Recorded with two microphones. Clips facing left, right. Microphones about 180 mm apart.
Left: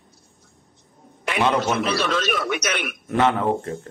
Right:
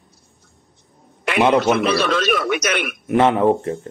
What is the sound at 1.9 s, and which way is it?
Speech, 65° right (ahead or behind).